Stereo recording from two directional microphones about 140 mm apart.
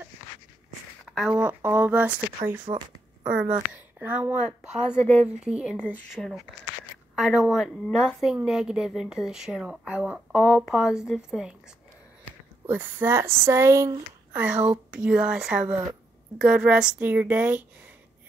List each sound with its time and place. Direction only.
1.0 s a sound: 5° right (ahead or behind)
1.3 s a woman's voice: 15° right (ahead or behind)
12.6 s speech: 15° right (ahead or behind)